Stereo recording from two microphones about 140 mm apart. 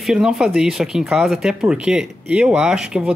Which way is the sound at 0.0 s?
5° right (ahead or behind).